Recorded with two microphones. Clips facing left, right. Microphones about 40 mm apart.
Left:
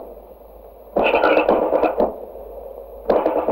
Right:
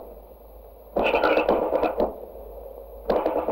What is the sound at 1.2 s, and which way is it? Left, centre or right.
Music, centre.